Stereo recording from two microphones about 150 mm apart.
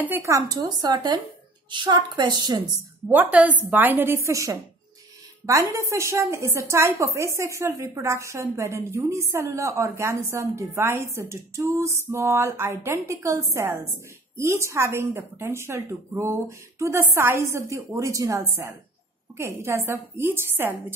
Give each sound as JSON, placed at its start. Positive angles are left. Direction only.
{"t": 0.0, "sound": "a woman's voice", "side_deg": -15}
{"t": 3.1, "sound": "a woman's voice", "side_deg": -10}